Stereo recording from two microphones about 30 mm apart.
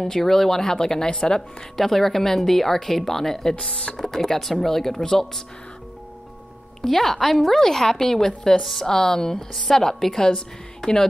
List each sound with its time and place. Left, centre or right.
0.0 s a woman's voice: centre
1.8 s a woman's voice: centre
3.6 s speech: left
3.9 s a woman's voice: centre
6.8 s a woman's voice: centre